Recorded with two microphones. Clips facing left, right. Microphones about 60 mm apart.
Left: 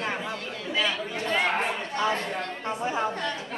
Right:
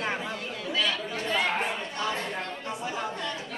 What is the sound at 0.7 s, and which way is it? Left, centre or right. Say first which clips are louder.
Speech: left 2 dB; centre.